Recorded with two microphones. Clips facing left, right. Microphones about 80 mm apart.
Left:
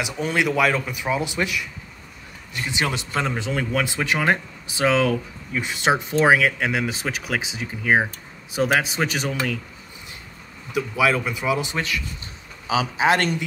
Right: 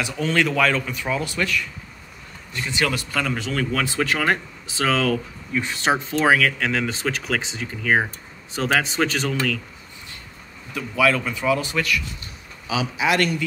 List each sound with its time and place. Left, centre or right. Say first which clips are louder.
0.0 s speech: right 1 dB; centre
10.7 s a man's voice: even; centre